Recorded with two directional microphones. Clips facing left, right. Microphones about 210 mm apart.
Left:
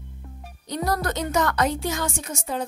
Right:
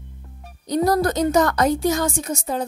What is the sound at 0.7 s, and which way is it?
Music, 35° right (ahead or behind).